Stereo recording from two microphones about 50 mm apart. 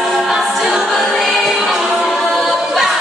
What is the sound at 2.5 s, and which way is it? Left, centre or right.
A capella, centre.